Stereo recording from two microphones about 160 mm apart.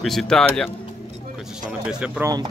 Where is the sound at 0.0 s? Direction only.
Centre (ahead or behind).